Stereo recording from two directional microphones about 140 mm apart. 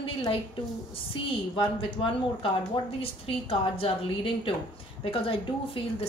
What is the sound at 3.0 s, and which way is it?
Speech, 45° left (ahead or behind).